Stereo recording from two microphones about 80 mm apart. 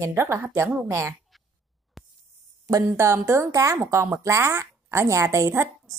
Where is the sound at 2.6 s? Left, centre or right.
Right.